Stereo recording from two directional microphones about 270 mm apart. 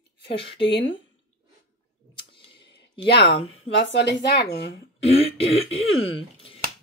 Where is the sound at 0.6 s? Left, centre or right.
Left.